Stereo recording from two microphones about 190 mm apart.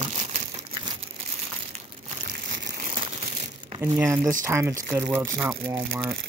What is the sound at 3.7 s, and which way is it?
Speech, 15° right (ahead or behind).